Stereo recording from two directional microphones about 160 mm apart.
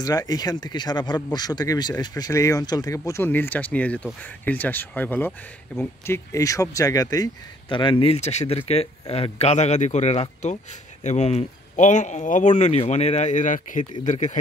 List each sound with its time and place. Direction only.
0.0 s speech: 25° left (ahead or behind); by 14.4 s 50° left (ahead or behind)